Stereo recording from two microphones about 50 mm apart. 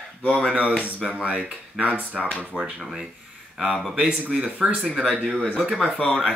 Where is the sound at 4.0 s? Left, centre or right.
Right.